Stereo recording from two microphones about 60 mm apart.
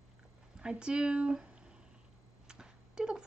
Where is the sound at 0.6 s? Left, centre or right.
Centre.